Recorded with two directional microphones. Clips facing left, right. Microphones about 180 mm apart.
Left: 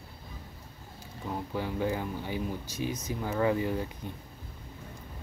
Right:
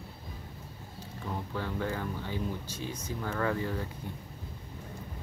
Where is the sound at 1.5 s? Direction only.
15° left (ahead or behind).